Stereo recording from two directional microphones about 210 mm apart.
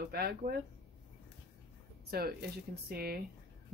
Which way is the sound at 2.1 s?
50° right (ahead or behind).